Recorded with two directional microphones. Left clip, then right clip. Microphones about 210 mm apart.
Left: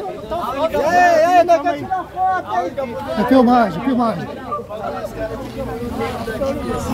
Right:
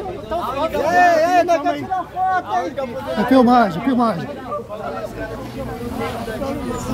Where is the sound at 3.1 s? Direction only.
10° right (ahead or behind).